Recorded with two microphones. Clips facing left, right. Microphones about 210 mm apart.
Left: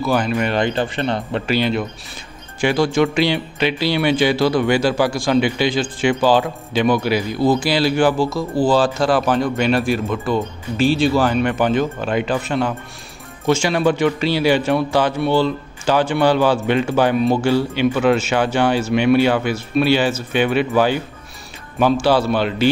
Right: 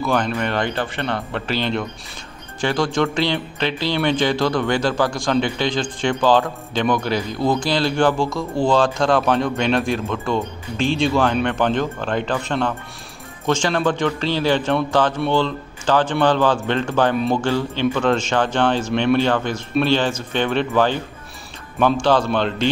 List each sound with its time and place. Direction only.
0.0 s speech: 5° left (ahead or behind)